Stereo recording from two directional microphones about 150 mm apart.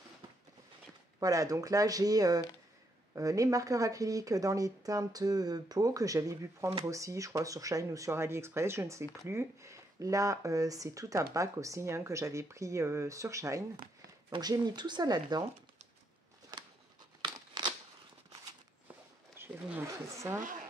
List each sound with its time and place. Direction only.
1.2 s speech: 25° right (ahead or behind)
16.5 s a sound: 25° right (ahead or behind)
17.2 s scissors: 30° right (ahead or behind)
19.3 s speech: 15° right (ahead or behind)